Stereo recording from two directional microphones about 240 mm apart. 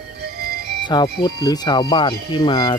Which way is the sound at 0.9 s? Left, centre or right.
Centre.